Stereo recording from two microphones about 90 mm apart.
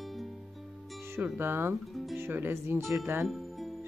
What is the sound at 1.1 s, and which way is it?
A woman's voice, 25° right (ahead or behind).